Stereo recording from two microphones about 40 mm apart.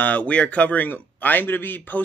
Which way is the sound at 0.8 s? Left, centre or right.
Left.